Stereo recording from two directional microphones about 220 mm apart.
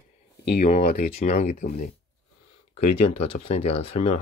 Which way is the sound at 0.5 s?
35° left (ahead or behind).